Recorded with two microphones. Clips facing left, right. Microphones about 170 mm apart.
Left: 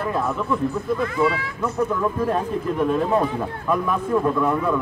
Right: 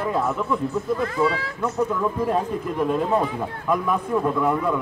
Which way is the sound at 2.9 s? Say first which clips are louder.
Left 1 dB; 10° right (ahead or behind).